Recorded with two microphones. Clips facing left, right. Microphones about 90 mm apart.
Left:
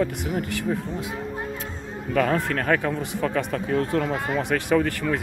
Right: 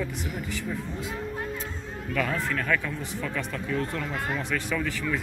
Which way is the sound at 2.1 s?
60° left (ahead or behind).